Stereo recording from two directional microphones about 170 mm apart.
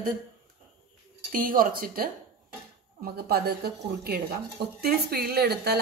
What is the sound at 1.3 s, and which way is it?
Speech, 55° right (ahead or behind).